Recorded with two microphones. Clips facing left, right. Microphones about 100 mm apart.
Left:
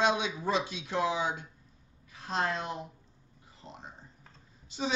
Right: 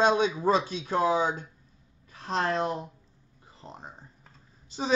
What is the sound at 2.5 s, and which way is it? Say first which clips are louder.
Speech: right 7 dB; 45° right (ahead or behind).